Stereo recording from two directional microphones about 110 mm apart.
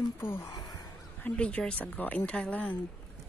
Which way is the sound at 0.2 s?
20° left (ahead or behind).